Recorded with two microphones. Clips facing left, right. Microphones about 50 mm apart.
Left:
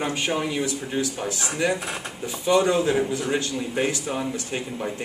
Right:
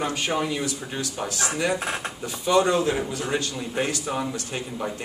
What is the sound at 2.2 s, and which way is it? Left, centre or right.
Speech, centre.